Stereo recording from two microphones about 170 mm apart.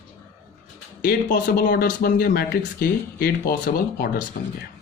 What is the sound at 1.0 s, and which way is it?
Speech, 60° left (ahead or behind).